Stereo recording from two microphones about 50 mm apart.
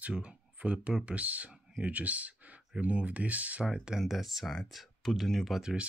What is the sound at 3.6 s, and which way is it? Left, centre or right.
Speech, centre.